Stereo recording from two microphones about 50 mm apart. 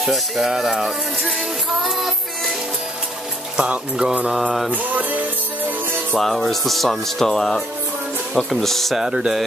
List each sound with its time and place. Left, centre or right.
0.0 s speech: centre
1.8 s music: centre
3.6 s speech: right
4.4 s speech: centre
4.6 s music: right
6.1 s speech: centre
9.0 s speech: centre